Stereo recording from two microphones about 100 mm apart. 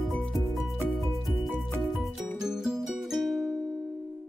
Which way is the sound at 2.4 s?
5° right (ahead or behind).